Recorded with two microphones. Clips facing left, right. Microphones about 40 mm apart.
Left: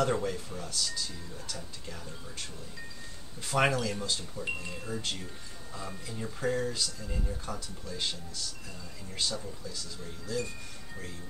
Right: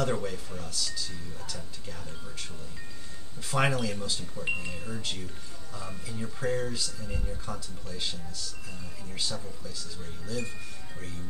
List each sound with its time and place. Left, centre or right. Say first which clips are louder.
0.0 s speech: left 1 dB; centre
4.5 s speech: right 4 dB; centre
4.7 s speech: even; centre